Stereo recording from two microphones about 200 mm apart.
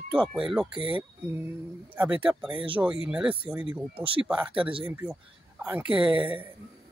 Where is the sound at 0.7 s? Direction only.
25° right (ahead or behind).